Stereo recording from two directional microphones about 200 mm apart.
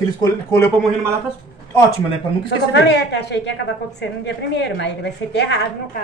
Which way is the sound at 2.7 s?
55° left (ahead or behind).